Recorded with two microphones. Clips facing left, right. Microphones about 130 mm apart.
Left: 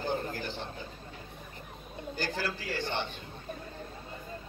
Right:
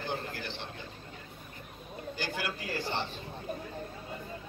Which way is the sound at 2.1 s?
40° left (ahead or behind).